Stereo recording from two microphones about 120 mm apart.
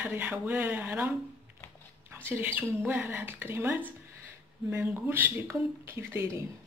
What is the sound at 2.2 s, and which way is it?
Speech, 15° right (ahead or behind).